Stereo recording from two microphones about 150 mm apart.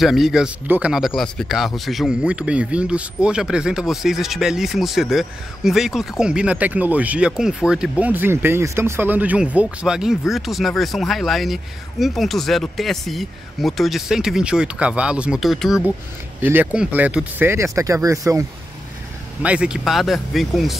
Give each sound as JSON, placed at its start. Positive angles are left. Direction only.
{"t": 0.0, "sound": "speech", "side_deg": 0}
{"t": 16.3, "sound": "speech", "side_deg": -15}
{"t": 19.4, "sound": "speech", "side_deg": -5}